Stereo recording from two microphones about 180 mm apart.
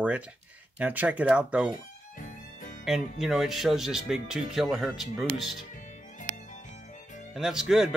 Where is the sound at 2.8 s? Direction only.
Centre (ahead or behind).